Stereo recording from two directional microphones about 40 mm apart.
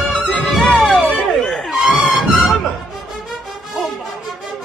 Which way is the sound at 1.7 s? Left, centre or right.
Centre.